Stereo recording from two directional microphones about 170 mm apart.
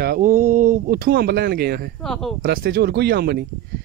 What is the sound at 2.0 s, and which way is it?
Speech, centre (ahead or behind).